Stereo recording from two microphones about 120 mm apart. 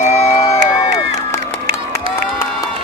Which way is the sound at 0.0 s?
70° left (ahead or behind).